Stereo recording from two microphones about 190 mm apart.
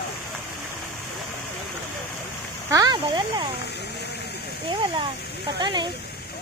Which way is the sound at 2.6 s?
20° right (ahead or behind).